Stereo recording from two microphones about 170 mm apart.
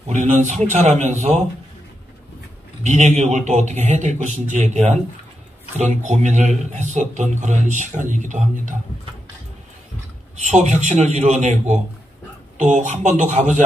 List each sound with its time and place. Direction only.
0.1 s a man's voice: 45° right (ahead or behind)
2.8 s a man's voice: 45° right (ahead or behind)
10.4 s a man's voice: 40° right (ahead or behind)
12.5 s a man's voice: 45° right (ahead or behind)